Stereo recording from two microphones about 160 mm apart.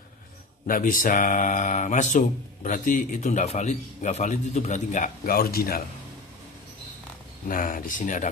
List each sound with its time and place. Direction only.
0.7 s speech: 55° left (ahead or behind)
7.4 s speech: 60° left (ahead or behind)